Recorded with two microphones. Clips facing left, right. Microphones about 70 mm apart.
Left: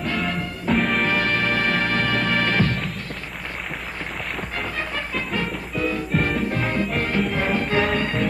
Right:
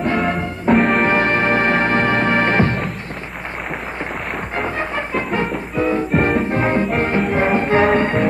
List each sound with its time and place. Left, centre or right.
0.0 s music: right
0.7 s music: centre
1.0 s music: right
4.6 s music: right